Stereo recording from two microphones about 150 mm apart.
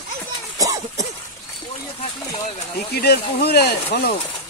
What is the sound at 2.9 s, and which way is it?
Speech, 90° left.